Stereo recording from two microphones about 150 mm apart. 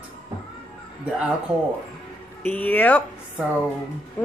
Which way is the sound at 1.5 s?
5° right (ahead or behind).